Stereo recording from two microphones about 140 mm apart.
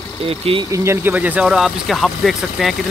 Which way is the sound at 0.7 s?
20° right (ahead or behind).